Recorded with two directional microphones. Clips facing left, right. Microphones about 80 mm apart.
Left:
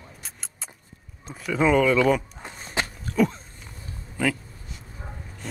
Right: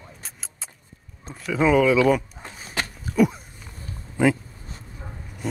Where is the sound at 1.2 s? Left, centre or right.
Centre.